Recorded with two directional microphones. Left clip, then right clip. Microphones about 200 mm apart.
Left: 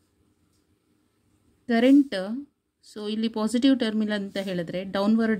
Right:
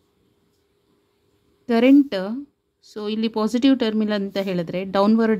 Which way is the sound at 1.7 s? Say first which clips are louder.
Right 4 dB; 15° right (ahead or behind).